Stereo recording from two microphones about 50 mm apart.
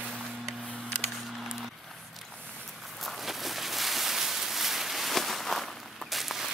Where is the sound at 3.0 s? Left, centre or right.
Centre.